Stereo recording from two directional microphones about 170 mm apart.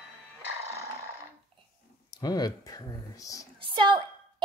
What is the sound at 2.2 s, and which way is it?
Speech, 25° left (ahead or behind).